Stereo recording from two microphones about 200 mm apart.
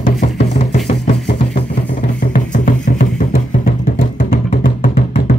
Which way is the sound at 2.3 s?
40° left (ahead or behind).